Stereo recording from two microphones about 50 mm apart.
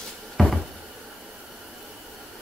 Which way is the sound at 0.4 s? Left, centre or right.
Centre.